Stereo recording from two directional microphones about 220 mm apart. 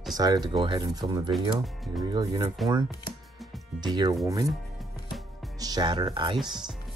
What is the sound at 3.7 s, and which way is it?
Speech, 20° right (ahead or behind).